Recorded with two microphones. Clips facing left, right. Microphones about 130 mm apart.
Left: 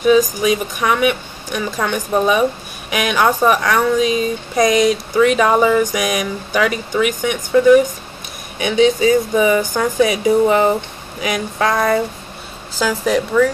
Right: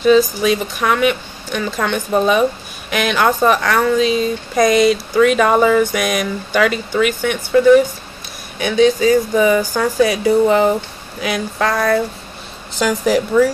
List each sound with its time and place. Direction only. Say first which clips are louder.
0.0 s speech: right 1 dB; 10° left (ahead or behind)
12.7 s a woman's voice: right 2 dB; centre (ahead or behind)